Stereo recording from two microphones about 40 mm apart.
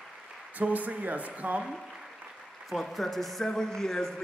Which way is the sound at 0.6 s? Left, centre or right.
Right.